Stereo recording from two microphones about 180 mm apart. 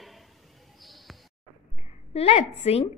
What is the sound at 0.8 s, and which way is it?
Basketball bounce, centre (ahead or behind).